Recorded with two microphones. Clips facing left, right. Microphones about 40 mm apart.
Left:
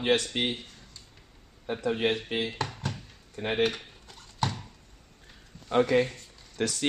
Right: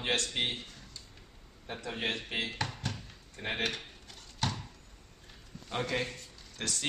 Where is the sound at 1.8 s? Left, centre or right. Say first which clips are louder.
Left 8 dB; centre.